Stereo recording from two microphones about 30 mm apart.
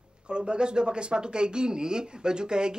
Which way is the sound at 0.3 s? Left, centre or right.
Right.